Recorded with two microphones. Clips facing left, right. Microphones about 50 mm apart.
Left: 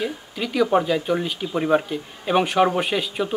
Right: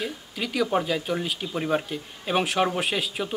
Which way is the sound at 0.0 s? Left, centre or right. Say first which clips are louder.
Left 4 dB; centre.